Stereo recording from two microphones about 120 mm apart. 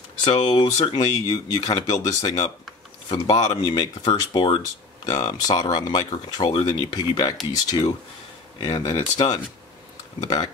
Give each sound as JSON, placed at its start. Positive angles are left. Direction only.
{"t": 0.2, "sound": "speech", "side_deg": 40}
{"t": 4.1, "sound": "speech", "side_deg": 45}
{"t": 5.0, "sound": "speech", "side_deg": 30}